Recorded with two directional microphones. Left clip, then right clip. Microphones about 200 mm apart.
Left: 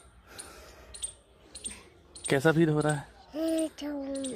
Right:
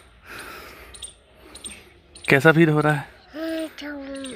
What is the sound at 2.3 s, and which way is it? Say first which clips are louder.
Speech: right 9 dB; 30° right (ahead or behind).